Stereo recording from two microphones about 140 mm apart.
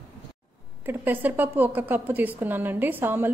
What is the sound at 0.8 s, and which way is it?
A woman's voice, 15° right (ahead or behind).